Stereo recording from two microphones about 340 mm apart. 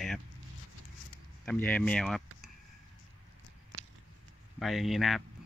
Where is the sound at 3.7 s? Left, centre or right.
Right.